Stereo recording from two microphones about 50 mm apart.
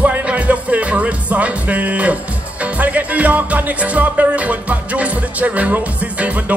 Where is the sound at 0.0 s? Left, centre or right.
Right.